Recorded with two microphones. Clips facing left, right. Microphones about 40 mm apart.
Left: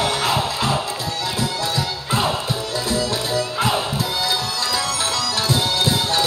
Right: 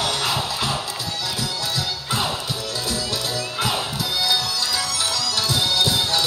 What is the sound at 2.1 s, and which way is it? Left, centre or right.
Music, left.